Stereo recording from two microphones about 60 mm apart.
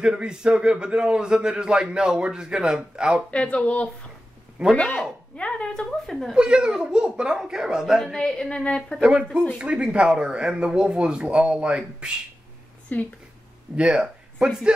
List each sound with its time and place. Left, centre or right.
0.0 s a man's voice: centre
3.3 s speech: centre
5.9 s a woman's voice: centre
6.3 s a man's voice: centre
8.1 s speech: centre
9.0 s a man's voice: centre
12.9 s speech: left
13.7 s speech: centre